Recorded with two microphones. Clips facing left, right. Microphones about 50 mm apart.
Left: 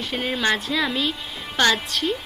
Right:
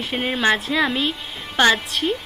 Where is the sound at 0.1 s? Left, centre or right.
Right.